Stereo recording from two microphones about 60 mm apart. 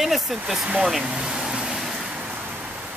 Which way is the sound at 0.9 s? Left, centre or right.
Centre.